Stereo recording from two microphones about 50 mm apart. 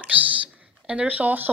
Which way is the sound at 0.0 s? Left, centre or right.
Right.